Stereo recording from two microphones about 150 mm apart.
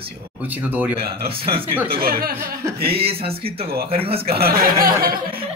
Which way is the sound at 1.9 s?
90° right.